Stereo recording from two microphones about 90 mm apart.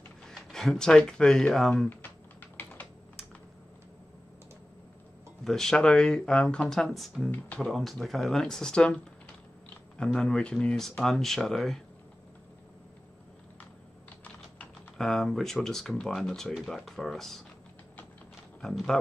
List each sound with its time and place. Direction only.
0.3 s speech: 5° left (ahead or behind)
1.9 s typing: 20° left (ahead or behind)
5.4 s speech: 5° left (ahead or behind)
7.2 s speech: 20° left (ahead or behind)
7.6 s speech: centre (ahead or behind)
9.9 s speech: 10° left (ahead or behind)
15.0 s speech: 5° left (ahead or behind)
18.6 s speech: 5° left (ahead or behind)